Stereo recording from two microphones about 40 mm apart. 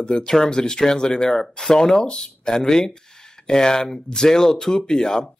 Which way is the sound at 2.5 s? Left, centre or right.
Centre.